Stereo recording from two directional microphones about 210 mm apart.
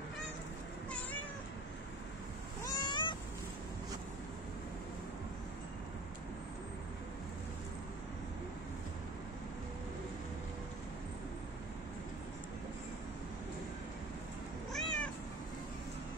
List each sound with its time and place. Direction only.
2.6 s cat: 20° left (ahead or behind)
14.7 s cat: 5° left (ahead or behind)